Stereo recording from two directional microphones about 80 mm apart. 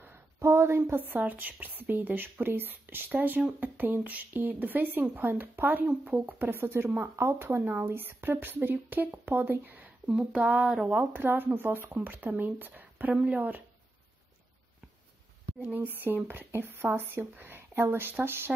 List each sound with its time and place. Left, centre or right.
0.4 s a woman's voice: right; by 13.6 s centre
15.6 s a woman's voice: right